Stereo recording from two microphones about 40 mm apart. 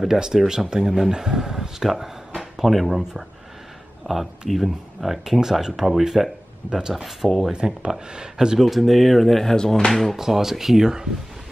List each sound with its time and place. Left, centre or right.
0.0 s speech: centre
4.1 s speech: centre
7.2 s speech: centre
8.1 s speech: centre
8.5 s speech: centre
10.1 s speech: centre